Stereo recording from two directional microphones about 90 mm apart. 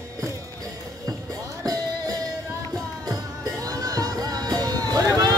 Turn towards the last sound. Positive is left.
turn(degrees=-45)  # may be behind; listen again after turning